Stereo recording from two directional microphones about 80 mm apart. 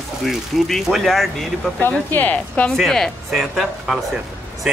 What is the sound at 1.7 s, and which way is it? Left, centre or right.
A woman's voice, left.